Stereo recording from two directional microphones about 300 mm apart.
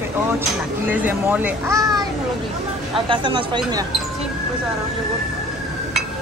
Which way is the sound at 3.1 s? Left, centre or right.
Centre.